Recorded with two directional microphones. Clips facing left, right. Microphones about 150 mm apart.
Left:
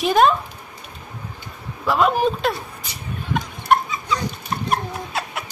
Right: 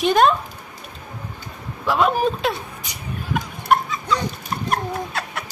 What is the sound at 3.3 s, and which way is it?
Chicken, centre (ahead or behind).